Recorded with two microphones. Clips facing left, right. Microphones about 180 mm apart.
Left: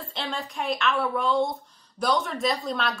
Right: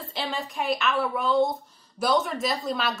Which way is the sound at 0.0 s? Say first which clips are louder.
Right 1 dB; centre (ahead or behind).